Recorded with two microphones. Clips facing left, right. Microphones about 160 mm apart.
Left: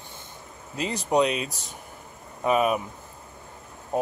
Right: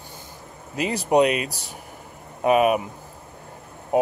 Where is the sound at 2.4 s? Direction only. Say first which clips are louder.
Right 4 dB; 60° right (ahead or behind).